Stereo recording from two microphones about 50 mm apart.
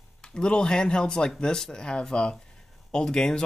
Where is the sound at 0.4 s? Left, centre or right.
Centre.